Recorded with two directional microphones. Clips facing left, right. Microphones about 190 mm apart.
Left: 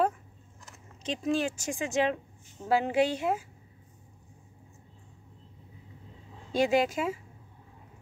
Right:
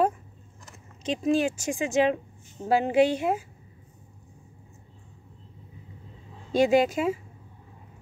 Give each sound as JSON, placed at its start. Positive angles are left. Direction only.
{"t": 1.0, "sound": "speech", "side_deg": -15}
{"t": 6.5, "sound": "speech", "side_deg": -20}